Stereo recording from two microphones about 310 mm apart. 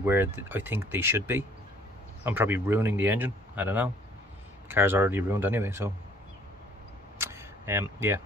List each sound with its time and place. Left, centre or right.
0.0 s speech: centre
7.2 s single-lens reflex camera: centre